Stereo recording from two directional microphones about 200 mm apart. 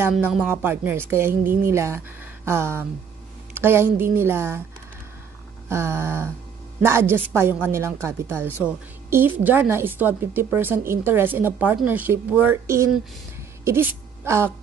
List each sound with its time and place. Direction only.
0.1 s speech: 5° right (ahead or behind)
1.4 s music: 40° right (ahead or behind)
1.7 s speech: 15° right (ahead or behind)
5.7 s speech: 15° right (ahead or behind)